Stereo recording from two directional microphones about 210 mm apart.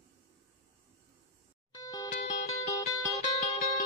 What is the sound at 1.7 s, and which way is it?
Music, 15° left (ahead or behind).